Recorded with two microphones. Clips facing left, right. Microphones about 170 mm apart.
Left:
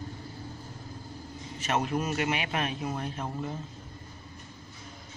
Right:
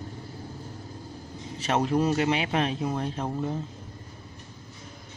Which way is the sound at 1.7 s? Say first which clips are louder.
Right 5 dB; 30° right (ahead or behind).